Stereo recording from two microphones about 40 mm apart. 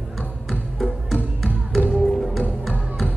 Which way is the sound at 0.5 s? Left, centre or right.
Centre.